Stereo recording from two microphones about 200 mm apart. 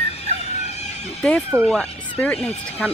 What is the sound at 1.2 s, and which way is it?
Speech, 5° left (ahead or behind).